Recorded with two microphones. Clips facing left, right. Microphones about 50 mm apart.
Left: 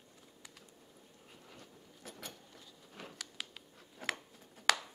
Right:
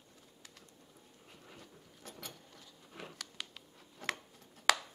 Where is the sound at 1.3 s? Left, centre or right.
Centre.